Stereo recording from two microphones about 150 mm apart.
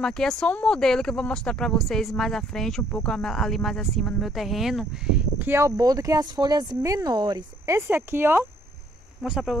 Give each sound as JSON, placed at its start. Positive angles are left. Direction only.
{"t": 0.0, "sound": "speech", "side_deg": 5}
{"t": 7.7, "sound": "speech", "side_deg": -15}
{"t": 9.2, "sound": "speech", "side_deg": -5}